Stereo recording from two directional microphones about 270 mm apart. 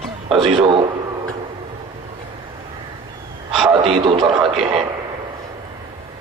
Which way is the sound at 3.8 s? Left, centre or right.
Centre.